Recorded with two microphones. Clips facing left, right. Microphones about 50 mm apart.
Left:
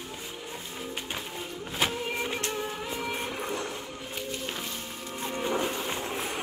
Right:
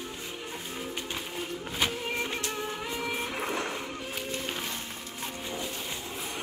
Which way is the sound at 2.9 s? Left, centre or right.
Centre.